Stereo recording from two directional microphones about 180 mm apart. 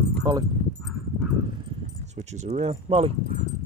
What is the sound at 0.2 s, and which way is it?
Keys jangling, 20° right (ahead or behind).